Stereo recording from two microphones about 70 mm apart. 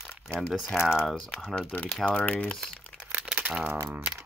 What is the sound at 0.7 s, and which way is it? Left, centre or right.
Speech, centre.